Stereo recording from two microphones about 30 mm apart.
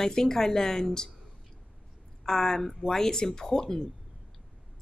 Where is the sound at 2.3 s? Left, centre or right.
Centre.